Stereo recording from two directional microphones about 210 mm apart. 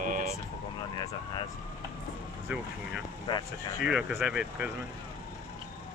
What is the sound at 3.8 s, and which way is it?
Speech, 5° right (ahead or behind).